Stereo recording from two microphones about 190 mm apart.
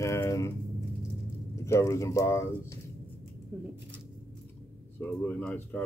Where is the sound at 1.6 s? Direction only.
15° left (ahead or behind).